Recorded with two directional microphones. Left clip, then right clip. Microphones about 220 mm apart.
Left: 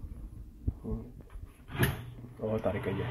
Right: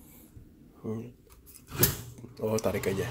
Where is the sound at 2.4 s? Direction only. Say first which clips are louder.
Right 3 dB; 15° right (ahead or behind).